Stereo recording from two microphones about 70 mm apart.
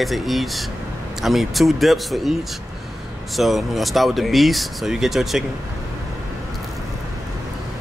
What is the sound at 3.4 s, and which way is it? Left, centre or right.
Speech, centre.